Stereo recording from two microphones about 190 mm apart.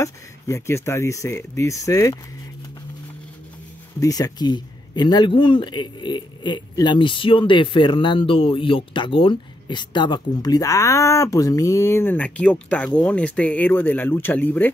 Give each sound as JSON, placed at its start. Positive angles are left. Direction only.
{"t": 0.0, "sound": "speech", "side_deg": 15}
{"t": 4.0, "sound": "speech", "side_deg": 20}